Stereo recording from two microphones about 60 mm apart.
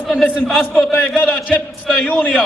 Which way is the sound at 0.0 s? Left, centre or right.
Centre.